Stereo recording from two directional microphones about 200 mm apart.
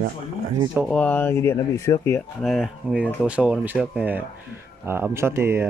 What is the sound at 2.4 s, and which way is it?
Speech, centre (ahead or behind).